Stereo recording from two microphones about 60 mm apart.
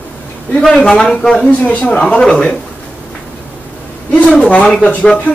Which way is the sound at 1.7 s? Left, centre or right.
Left.